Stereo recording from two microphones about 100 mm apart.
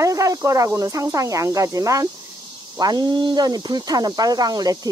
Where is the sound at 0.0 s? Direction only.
35° right (ahead or behind).